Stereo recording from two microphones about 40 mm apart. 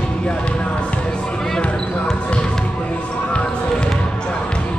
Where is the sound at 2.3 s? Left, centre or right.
Left.